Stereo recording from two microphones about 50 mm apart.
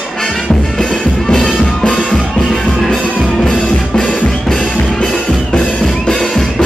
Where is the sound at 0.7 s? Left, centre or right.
Centre.